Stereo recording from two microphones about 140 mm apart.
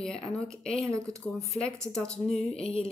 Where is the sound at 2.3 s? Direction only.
45° left (ahead or behind).